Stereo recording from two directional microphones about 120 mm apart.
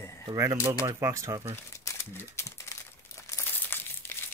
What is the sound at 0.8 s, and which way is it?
Speech, 25° right (ahead or behind).